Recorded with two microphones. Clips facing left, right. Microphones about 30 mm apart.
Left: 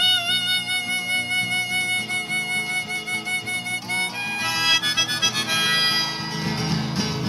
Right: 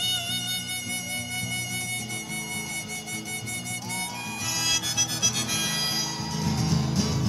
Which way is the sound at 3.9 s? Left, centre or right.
Left.